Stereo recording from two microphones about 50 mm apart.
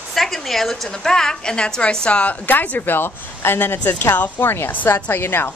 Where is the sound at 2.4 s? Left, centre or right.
Left.